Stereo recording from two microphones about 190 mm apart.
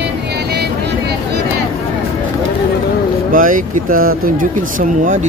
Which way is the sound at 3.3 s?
45° right (ahead or behind).